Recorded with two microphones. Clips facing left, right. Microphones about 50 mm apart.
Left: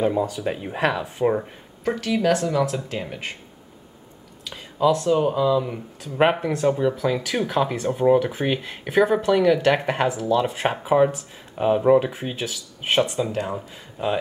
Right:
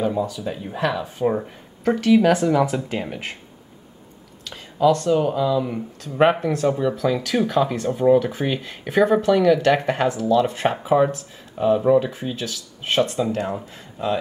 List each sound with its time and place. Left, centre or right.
0.0 s speech: left
1.1 s speech: centre
4.5 s speech: centre
11.5 s speech: centre